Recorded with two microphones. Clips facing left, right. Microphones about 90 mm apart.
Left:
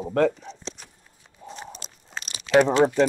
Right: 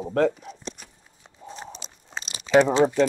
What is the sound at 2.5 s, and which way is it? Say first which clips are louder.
Speech: even; centre (ahead or behind).